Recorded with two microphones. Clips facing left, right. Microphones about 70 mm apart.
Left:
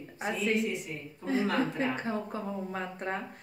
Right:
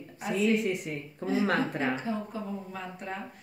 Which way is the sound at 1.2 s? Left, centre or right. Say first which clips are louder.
Right 1 dB; right.